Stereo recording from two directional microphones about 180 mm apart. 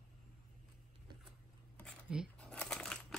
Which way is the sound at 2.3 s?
5° left (ahead or behind).